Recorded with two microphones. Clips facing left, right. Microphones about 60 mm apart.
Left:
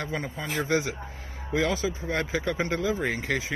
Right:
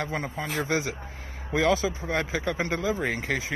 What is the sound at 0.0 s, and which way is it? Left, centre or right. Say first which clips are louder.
Speech: right 2 dB; right.